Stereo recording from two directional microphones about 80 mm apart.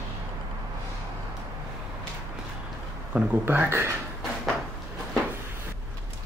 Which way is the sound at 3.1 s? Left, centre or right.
Centre.